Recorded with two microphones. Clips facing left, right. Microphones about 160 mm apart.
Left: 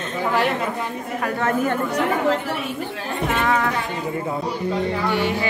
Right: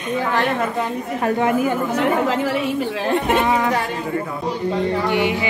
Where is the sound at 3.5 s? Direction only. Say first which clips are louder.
Right 2 dB; 15° right (ahead or behind).